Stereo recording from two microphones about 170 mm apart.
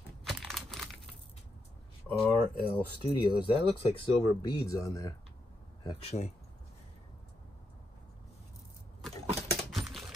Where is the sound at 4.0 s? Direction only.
20° left (ahead or behind).